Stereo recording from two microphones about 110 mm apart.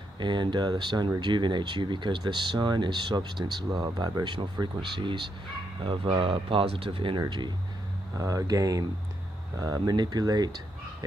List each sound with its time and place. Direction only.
0.2 s speech: 45° right (ahead or behind)
8.2 s speech: 30° right (ahead or behind)